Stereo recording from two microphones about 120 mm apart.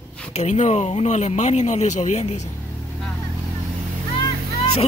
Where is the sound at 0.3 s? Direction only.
70° left (ahead or behind).